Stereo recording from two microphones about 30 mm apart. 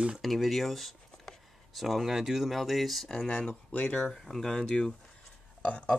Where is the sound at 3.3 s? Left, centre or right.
Left.